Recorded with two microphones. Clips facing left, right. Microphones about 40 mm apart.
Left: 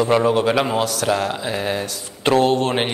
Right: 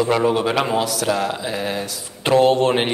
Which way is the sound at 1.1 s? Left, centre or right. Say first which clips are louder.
Left 1 dB; centre.